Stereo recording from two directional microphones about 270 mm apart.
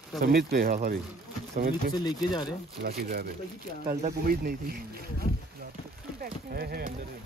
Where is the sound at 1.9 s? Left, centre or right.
Centre.